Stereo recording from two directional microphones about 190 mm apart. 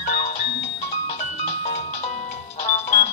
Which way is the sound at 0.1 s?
30° left (ahead or behind).